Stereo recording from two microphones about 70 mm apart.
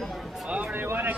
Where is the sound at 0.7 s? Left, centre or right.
Right.